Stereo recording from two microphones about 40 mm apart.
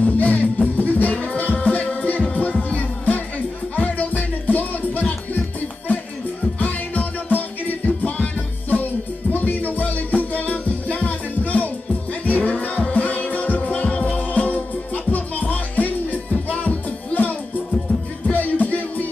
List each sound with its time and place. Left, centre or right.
0.0 s music: left
4.1 s music: left
6.6 s music: left